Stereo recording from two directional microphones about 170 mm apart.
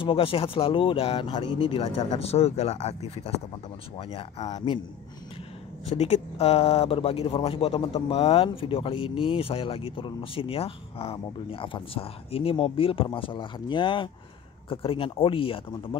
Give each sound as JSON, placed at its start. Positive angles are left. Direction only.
{"t": 0.0, "sound": "speech", "side_deg": 30}
{"t": 5.9, "sound": "speech", "side_deg": 40}